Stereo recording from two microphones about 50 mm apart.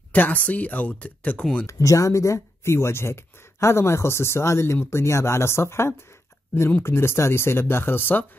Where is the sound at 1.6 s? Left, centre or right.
Left.